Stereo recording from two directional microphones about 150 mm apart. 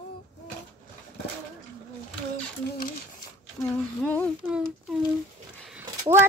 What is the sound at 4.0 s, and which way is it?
Speech, 10° left (ahead or behind).